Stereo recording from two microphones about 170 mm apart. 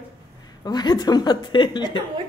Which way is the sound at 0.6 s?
25° left (ahead or behind).